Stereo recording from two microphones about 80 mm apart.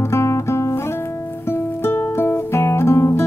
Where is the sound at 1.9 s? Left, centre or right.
Left.